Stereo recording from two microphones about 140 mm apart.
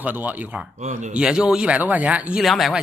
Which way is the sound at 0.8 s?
60° right (ahead or behind).